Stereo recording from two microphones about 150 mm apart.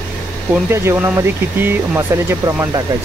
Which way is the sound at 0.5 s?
15° right (ahead or behind).